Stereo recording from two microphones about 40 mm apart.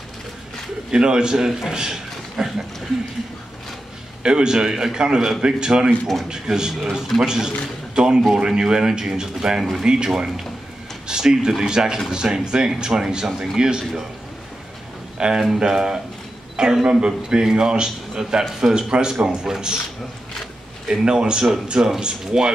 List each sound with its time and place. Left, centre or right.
0.9 s a man's voice: right
4.2 s a man's voice: centre
5.9 s speech: centre
6.2 s speech: centre
11.1 s a sound: centre
11.6 s speech: centre
15.1 s a man's voice: right
21.0 s a man's voice: right